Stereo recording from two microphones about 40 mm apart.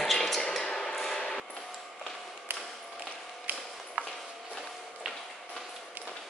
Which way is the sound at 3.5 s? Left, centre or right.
Right.